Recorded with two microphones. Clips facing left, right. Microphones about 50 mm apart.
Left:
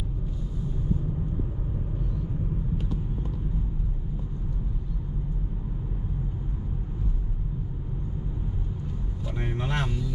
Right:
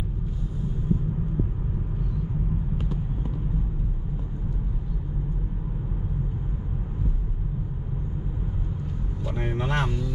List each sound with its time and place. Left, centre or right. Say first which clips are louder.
9.4 s vehicle: right 3 dB; centre